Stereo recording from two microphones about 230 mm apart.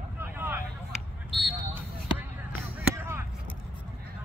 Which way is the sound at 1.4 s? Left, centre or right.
Centre.